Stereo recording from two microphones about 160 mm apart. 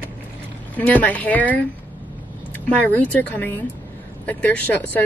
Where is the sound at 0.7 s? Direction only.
10° left (ahead or behind).